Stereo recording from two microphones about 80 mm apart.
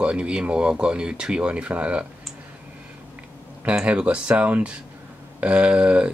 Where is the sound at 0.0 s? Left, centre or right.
Centre.